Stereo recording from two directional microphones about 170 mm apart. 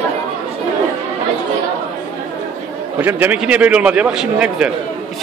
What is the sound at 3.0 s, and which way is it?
A man's voice, 10° right (ahead or behind).